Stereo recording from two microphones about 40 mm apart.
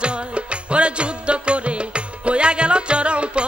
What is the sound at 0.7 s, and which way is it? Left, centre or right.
Music, right.